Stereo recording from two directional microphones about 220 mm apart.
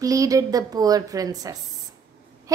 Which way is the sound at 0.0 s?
15° right (ahead or behind).